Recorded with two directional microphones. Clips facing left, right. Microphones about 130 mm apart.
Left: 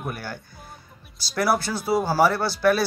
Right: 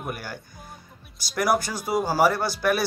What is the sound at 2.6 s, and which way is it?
Speech, 15° right (ahead or behind).